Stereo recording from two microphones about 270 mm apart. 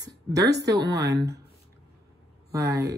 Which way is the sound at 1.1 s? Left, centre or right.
Right.